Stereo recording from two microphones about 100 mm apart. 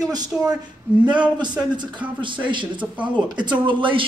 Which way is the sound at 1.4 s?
50° right (ahead or behind).